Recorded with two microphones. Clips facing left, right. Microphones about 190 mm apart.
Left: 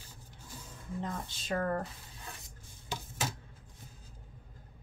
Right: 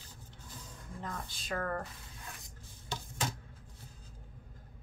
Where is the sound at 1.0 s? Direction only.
25° left (ahead or behind).